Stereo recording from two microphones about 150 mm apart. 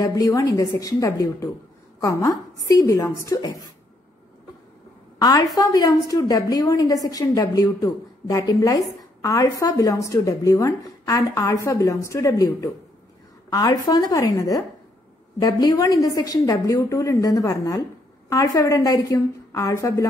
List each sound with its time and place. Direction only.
0.0 s a woman's voice: 20° left (ahead or behind)
5.2 s a woman's voice: 25° left (ahead or behind)